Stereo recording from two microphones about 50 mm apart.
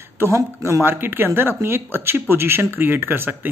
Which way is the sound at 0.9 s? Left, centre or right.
Right.